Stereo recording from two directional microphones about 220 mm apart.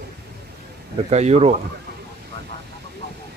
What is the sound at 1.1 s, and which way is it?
Speech, 30° right (ahead or behind).